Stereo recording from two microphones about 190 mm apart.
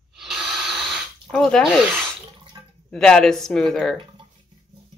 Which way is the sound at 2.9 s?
5° left (ahead or behind).